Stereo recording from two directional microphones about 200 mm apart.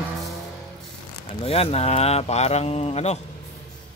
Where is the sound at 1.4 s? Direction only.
30° left (ahead or behind).